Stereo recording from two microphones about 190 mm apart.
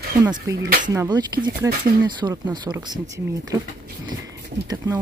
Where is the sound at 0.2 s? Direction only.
20° right (ahead or behind).